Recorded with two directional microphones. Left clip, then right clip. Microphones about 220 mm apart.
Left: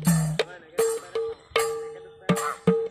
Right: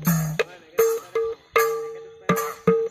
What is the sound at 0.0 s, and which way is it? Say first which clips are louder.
Music: right 2 dB; 50° left (ahead or behind).